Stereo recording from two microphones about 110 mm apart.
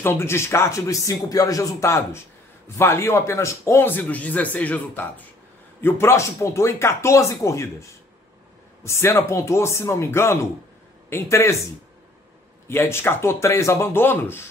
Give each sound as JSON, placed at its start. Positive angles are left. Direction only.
{"t": 0.0, "sound": "speech", "side_deg": 20}
{"t": 12.6, "sound": "speech", "side_deg": 20}